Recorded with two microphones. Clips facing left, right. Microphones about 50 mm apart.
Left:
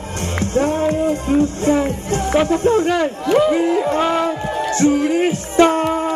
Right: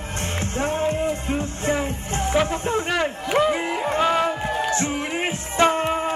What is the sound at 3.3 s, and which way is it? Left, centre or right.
Music, centre.